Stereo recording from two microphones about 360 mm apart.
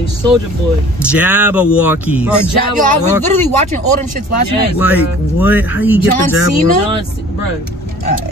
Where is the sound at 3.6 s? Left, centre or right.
Centre.